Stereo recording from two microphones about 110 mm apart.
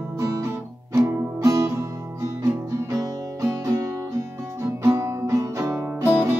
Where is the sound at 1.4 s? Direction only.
35° right (ahead or behind).